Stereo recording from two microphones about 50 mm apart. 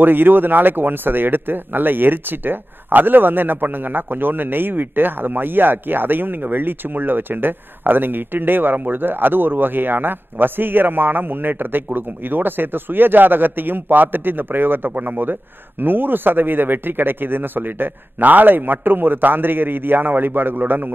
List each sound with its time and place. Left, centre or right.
0.0 s speech: right